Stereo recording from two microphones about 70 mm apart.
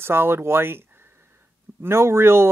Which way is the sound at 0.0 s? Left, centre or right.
Right.